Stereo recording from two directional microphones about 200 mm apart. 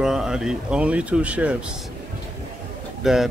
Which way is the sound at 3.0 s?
Centre (ahead or behind).